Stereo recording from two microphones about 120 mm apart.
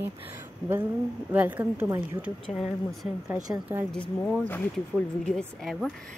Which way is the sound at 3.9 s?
5° left (ahead or behind).